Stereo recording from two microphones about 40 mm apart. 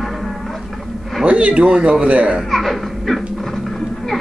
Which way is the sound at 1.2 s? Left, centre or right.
Right.